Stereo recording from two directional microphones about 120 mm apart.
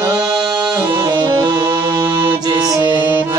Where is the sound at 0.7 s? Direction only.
30° right (ahead or behind).